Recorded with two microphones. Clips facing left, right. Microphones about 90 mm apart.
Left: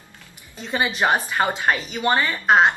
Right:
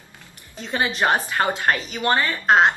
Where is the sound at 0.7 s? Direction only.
10° left (ahead or behind).